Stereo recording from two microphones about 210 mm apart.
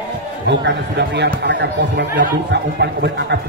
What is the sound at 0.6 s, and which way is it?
Speech, 55° right (ahead or behind).